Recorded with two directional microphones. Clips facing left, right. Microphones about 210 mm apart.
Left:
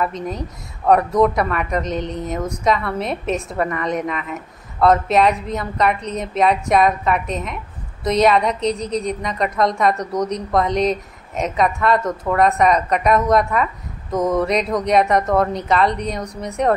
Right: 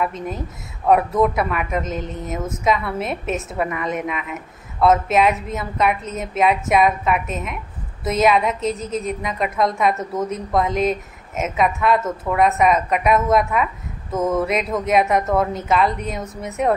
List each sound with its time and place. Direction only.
0.0 s a woman's voice: 5° right (ahead or behind)